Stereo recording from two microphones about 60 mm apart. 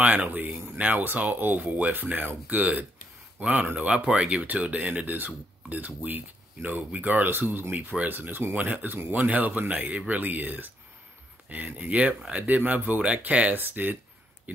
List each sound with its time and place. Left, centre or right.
0.0 s speech: right